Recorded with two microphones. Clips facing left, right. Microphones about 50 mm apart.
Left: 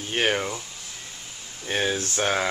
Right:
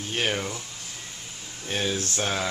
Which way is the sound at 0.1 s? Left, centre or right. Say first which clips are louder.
Left 4 dB; left.